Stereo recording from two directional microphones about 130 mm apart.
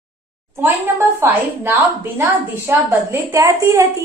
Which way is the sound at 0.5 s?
15° right (ahead or behind).